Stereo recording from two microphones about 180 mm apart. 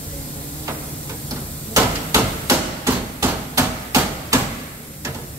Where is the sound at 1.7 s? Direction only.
15° right (ahead or behind).